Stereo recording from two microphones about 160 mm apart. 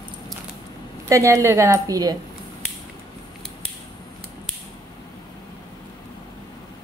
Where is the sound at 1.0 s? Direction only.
20° right (ahead or behind).